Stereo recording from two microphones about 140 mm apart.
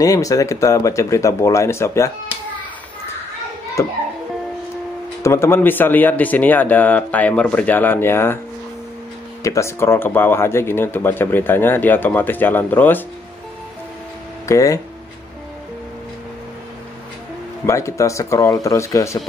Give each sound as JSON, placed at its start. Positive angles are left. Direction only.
{"t": 0.0, "sound": "speech", "side_deg": 25}
{"t": 3.8, "sound": "speech", "side_deg": 20}
{"t": 5.2, "sound": "speech", "side_deg": 20}
{"t": 9.4, "sound": "speech", "side_deg": 20}
{"t": 14.5, "sound": "speech", "side_deg": 25}
{"t": 17.6, "sound": "speech", "side_deg": 20}